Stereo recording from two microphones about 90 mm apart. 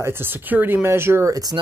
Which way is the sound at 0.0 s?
25° right (ahead or behind).